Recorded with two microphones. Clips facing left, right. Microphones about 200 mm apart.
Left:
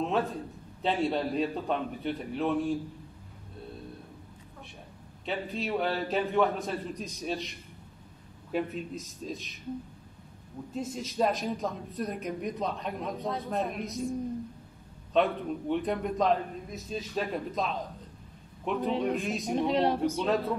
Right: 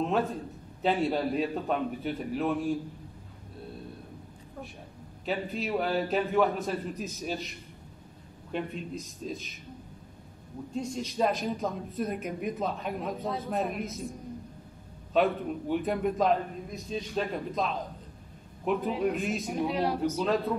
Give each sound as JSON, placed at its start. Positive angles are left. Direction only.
{"t": 0.0, "sound": "speech", "side_deg": 0}
{"t": 5.2, "sound": "speech", "side_deg": 0}
{"t": 10.7, "sound": "speech", "side_deg": 5}
{"t": 15.1, "sound": "speech", "side_deg": 0}
{"t": 19.5, "sound": "speech", "side_deg": 30}
{"t": 20.2, "sound": "speech", "side_deg": 0}